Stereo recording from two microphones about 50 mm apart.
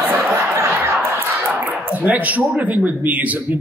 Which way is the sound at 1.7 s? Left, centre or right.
Right.